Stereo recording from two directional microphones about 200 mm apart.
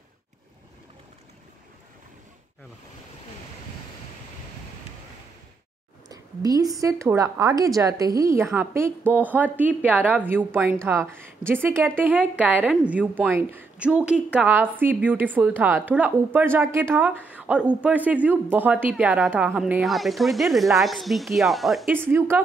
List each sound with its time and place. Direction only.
6.0 s a woman's voice: 20° right (ahead or behind); by 22.0 s centre (ahead or behind)
22.0 s a woman's voice: 10° right (ahead or behind)